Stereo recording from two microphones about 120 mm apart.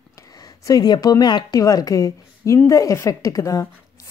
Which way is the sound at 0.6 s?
35° left (ahead or behind).